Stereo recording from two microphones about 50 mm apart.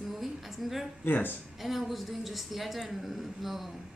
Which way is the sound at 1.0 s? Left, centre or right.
Left.